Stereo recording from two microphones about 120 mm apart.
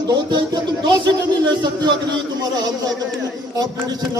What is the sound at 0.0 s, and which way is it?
Speech, 35° right (ahead or behind).